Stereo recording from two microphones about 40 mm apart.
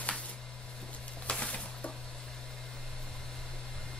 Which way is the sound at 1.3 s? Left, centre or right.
Left.